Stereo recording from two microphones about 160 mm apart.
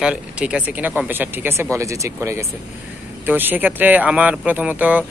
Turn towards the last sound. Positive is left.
turn(degrees=-10)  # may be behind; listen again after turning